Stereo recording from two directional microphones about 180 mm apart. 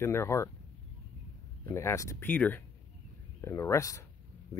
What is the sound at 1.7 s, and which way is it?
Speech, 15° left (ahead or behind).